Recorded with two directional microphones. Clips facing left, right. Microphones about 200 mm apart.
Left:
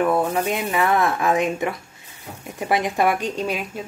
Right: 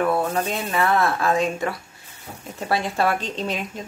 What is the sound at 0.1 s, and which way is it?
A woman's voice, 15° left (ahead or behind).